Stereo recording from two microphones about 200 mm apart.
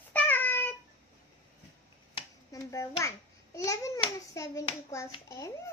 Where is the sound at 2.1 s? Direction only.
15° left (ahead or behind).